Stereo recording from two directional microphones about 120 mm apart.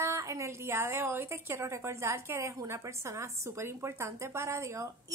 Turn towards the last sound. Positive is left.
turn(degrees=-25)  # may be behind; listen again after turning